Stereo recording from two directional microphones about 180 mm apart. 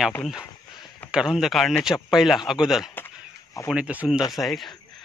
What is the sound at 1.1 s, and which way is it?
Speech, 5° right (ahead or behind).